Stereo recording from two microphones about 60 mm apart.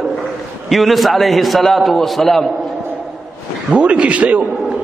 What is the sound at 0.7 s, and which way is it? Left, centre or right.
A man's voice, centre.